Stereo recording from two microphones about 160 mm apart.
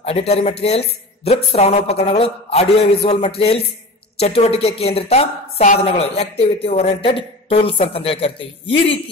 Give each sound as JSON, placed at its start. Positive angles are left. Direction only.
{"t": 0.0, "sound": "a woman's voice", "side_deg": 40}